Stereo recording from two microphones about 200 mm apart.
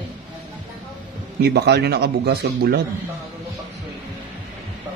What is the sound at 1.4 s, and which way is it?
A man's voice, 55° right (ahead or behind).